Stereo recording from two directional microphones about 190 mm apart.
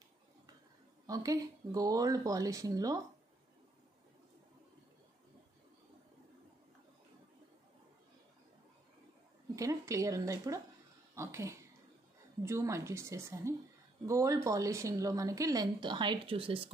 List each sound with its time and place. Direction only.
1.0 s speech: 20° right (ahead or behind)
9.6 s a woman's voice: 15° right (ahead or behind)